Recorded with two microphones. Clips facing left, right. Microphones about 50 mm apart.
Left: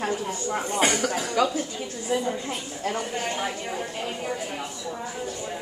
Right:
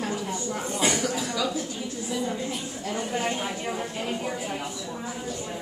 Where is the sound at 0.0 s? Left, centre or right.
Left.